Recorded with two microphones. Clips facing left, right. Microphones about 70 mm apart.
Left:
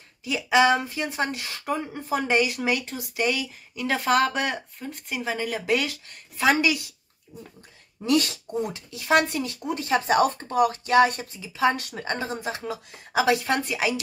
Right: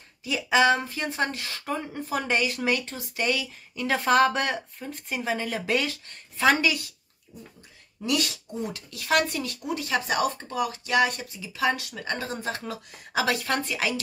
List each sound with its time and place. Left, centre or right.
0.2 s speech: centre
8.7 s speech: left